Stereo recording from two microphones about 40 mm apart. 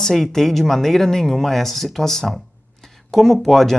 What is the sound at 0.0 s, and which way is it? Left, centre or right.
Speech, centre.